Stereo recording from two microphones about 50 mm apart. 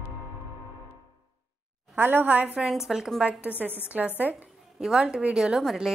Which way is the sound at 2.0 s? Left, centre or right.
Right.